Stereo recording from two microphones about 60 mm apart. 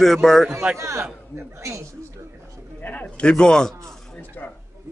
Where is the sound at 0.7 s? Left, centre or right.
Right.